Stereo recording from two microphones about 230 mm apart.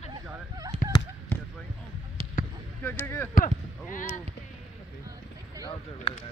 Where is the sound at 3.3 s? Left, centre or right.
Left.